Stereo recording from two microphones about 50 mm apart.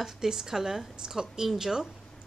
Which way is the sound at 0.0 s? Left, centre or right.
Centre.